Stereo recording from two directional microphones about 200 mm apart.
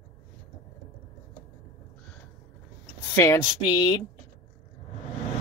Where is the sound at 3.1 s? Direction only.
15° left (ahead or behind).